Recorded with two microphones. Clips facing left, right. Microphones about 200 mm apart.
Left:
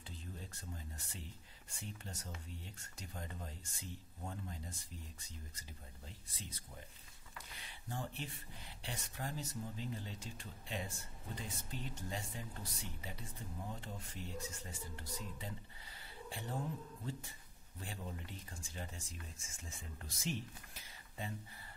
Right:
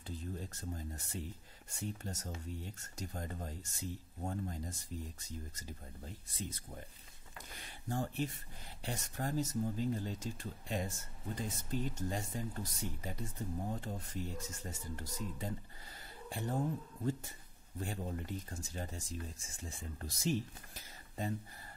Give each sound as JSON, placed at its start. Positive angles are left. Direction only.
{"t": 0.1, "sound": "speech", "side_deg": -45}